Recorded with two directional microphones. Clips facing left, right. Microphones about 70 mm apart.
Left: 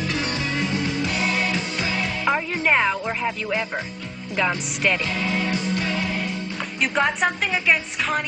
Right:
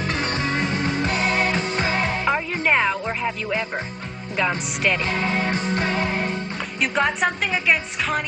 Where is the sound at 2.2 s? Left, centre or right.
Centre.